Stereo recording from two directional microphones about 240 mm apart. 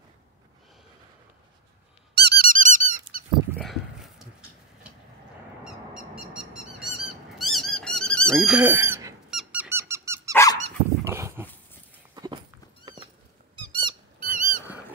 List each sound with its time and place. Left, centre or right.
2.1 s squeak: right
3.5 s a sound: centre
5.6 s squeak: centre
8.4 s squeak: centre
10.3 s dog: centre
11.1 s dog: centre
12.2 s walk: centre
12.8 s cat: right
13.6 s squeak: centre
14.2 s squeak: right